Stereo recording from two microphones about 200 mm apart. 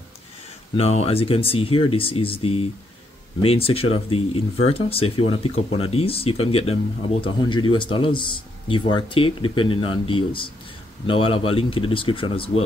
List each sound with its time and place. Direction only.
0.7 s speech: 30° left (ahead or behind)